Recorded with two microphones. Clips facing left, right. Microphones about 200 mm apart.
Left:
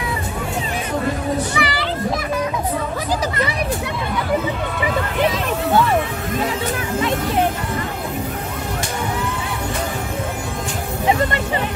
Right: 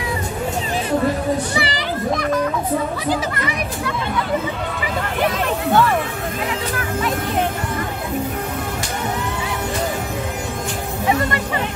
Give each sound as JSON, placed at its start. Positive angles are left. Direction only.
{"t": 1.6, "sound": "a child's voice", "side_deg": -30}